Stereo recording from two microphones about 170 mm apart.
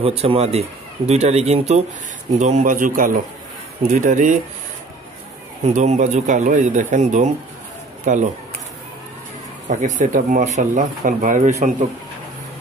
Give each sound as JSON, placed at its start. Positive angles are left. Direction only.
{"t": 0.0, "sound": "a man's voice", "side_deg": -35}
{"t": 5.7, "sound": "speech", "side_deg": -45}
{"t": 9.7, "sound": "speech", "side_deg": -45}